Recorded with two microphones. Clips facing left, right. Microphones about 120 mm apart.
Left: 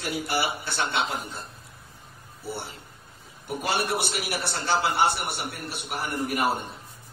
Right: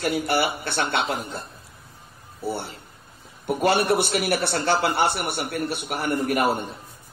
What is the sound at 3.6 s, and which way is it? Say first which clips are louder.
A man's voice: right 7 dB; 55° right (ahead or behind).